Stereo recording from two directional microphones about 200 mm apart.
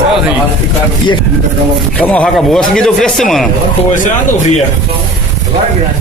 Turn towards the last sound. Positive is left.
turn(degrees=40)  # may be behind; listen again after turning